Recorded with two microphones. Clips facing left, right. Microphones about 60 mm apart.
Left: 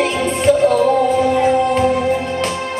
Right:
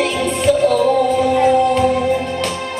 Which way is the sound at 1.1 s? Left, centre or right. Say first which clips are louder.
Right 1 dB; centre.